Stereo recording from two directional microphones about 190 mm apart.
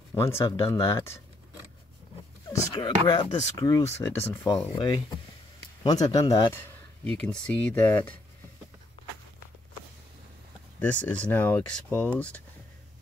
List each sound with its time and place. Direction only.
0.1 s speech: 15° left (ahead or behind)
2.7 s speech: 25° left (ahead or behind)
4.5 s speech: 25° left (ahead or behind)
7.1 s speech: 5° left (ahead or behind)
10.8 s speech: 10° left (ahead or behind)